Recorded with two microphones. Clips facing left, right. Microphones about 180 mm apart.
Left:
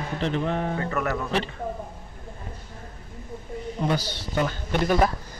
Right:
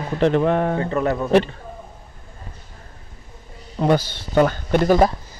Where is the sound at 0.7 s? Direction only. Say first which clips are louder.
Right 6 dB; 30° right (ahead or behind).